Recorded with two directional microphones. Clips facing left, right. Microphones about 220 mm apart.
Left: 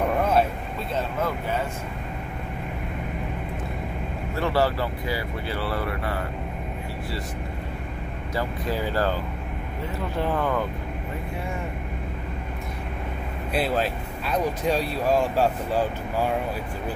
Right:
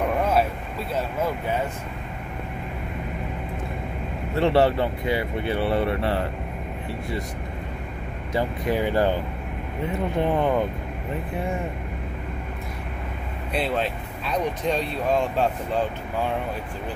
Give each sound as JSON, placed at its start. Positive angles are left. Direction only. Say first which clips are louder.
{"t": 4.4, "sound": "speech", "louder": "right 4 dB", "side_deg": -25}
{"t": 8.4, "sound": "speech", "louder": "right 4 dB", "side_deg": -20}
{"t": 13.5, "sound": "speech", "louder": "left 1 dB", "side_deg": 5}